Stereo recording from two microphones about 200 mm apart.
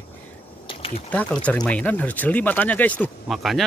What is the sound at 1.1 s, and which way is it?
Speech, 5° left (ahead or behind).